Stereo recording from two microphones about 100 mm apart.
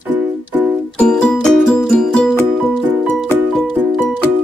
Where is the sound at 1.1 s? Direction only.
5° left (ahead or behind).